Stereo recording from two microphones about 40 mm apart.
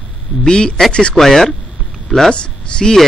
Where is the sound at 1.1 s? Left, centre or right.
Centre.